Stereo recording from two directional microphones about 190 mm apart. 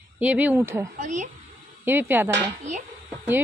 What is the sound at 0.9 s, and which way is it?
Speech, 40° right (ahead or behind).